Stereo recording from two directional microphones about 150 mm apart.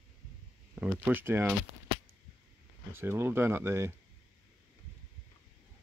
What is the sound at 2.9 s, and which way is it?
Speech, 15° right (ahead or behind).